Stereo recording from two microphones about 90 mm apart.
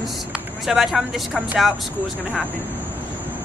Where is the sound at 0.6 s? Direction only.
Centre (ahead or behind).